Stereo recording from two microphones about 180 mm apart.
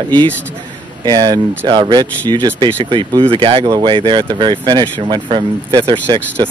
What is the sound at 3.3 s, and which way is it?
Speech, 30° right (ahead or behind).